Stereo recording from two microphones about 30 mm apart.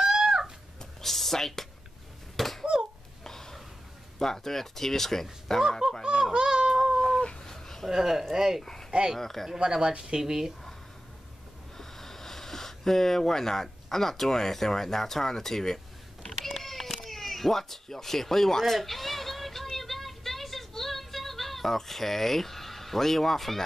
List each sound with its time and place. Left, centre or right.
0.0 s cat: centre
1.0 s speech: centre
2.3 s a sound: centre
3.3 s snort: centre
4.2 s speech: centre
5.6 s honk: centre
6.3 s a sound: right
7.2 s cat: left
7.4 s a sound: centre
7.9 s speech: centre
9.2 s speech: centre
9.7 s speech: right
11.7 s a sound: centre